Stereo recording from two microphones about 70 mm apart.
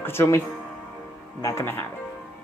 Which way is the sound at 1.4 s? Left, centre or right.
Left.